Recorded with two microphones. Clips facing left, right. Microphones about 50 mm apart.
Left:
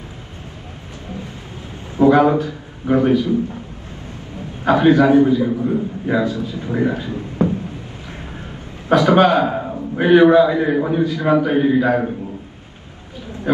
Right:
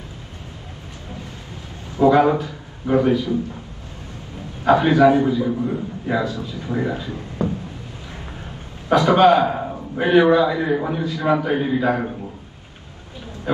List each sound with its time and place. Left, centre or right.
2.0 s a man's voice: left
4.6 s speech: left
8.8 s speech: left